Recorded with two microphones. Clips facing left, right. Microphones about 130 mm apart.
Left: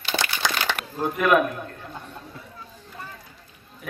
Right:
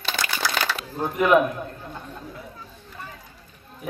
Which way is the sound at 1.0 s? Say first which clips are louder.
Right 1 dB; 20° right (ahead or behind).